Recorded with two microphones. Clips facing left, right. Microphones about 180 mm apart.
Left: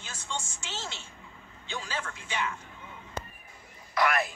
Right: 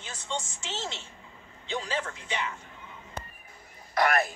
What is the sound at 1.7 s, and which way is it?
Speech, 25° right (ahead or behind).